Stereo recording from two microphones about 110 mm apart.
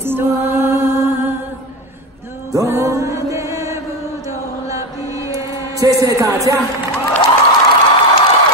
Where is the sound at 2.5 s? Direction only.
25° right (ahead or behind).